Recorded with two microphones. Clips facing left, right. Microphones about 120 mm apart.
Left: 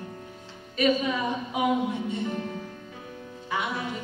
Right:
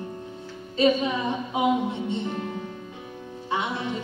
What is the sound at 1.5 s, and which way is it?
Music, 25° right (ahead or behind).